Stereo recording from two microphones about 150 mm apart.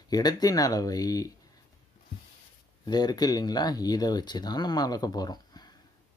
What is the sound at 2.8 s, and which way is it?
Speech, 25° left (ahead or behind).